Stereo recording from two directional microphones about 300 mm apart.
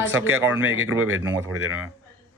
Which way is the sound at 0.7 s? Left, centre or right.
Right.